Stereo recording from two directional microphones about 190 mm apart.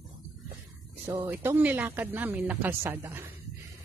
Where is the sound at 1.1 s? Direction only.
10° right (ahead or behind).